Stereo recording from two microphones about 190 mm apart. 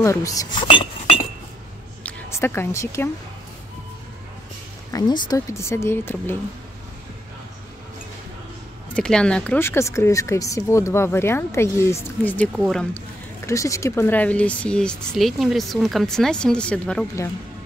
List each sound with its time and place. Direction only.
0.0 s speech: 15° left (ahead or behind)
2.0 s speech: 10° left (ahead or behind)
4.9 s speech: 20° left (ahead or behind)
8.9 s speech: 5° left (ahead or behind)
13.5 s speech: 15° left (ahead or behind)